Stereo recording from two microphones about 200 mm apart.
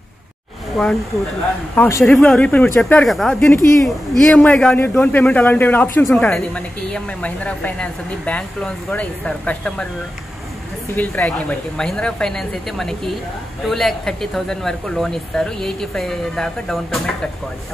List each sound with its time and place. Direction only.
0.8 s speech: centre (ahead or behind)
1.8 s speech: 15° left (ahead or behind)
2.0 s speech: 5° left (ahead or behind)
3.5 s speech: 15° left (ahead or behind)
11.0 s speech: 5° left (ahead or behind)